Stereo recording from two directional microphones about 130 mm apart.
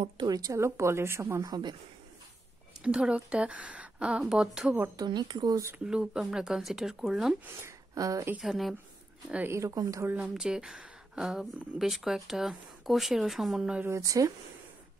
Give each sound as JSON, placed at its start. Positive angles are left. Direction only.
{"t": 0.0, "sound": "speech", "side_deg": -35}
{"t": 2.8, "sound": "speech", "side_deg": -10}
{"t": 4.9, "sound": "a woman's voice", "side_deg": -35}
{"t": 5.9, "sound": "speech", "side_deg": -5}
{"t": 7.6, "sound": "speech", "side_deg": -25}
{"t": 8.4, "sound": "speech", "side_deg": 0}
{"t": 9.3, "sound": "speech", "side_deg": -15}
{"t": 10.0, "sound": "speech", "side_deg": -10}
{"t": 13.8, "sound": "speech", "side_deg": -25}